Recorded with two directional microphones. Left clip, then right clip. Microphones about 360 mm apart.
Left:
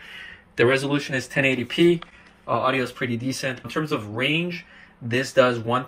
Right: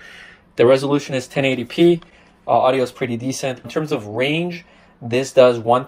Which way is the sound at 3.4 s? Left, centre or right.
Centre.